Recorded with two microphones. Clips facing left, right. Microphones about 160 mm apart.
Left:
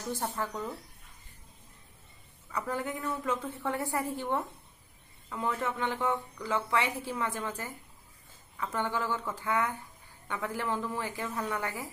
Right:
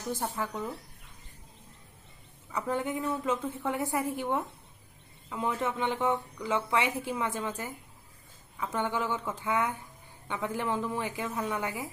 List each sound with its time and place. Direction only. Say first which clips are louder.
0.4 s a woman's voice: right 1 dB; 10° right (ahead or behind)
2.5 s a woman's voice: right 3 dB; 20° right (ahead or behind)